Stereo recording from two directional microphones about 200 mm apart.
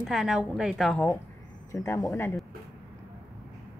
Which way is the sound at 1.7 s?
15° left (ahead or behind).